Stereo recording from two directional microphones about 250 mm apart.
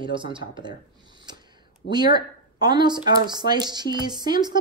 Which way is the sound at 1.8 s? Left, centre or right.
Left.